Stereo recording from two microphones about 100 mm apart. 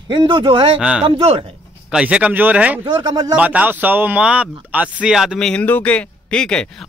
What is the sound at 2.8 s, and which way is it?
Speech, 40° right (ahead or behind).